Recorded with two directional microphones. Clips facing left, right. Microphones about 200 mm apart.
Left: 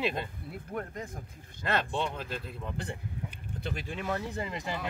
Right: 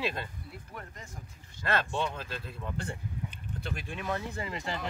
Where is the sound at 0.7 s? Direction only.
50° left (ahead or behind).